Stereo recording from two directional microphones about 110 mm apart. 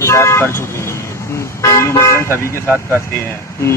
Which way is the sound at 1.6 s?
25° left (ahead or behind).